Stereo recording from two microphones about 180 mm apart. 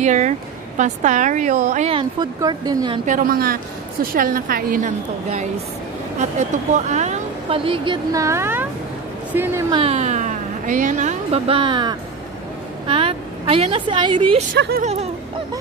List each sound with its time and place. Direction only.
0.0 s a woman's voice: 40° right (ahead or behind)
2.0 s speech: 20° right (ahead or behind)
3.1 s a woman's voice: 50° right (ahead or behind)
6.7 s a woman's voice: 40° right (ahead or behind); by 9.7 s 10° right (ahead or behind)
9.7 s a woman's voice: 35° right (ahead or behind)
14.5 s speech: 75° right (ahead or behind)
14.8 s speech: 35° right (ahead or behind)